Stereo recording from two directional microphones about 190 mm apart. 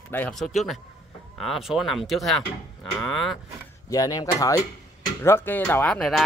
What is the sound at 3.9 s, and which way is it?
Speech, 20° left (ahead or behind).